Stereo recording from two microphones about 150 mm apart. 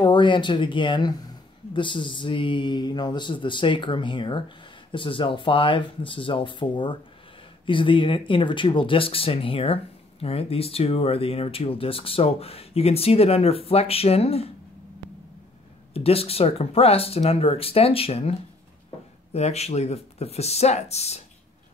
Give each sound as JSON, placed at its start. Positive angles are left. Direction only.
{"t": 0.0, "sound": "speech", "side_deg": 30}
{"t": 15.9, "sound": "speech", "side_deg": 40}
{"t": 19.3, "sound": "speech", "side_deg": 45}